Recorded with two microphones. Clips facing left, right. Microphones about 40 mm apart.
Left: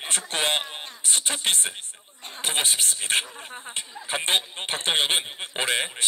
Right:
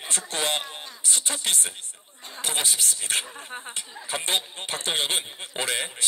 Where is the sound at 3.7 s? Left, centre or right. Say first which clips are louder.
Left 5 dB; left.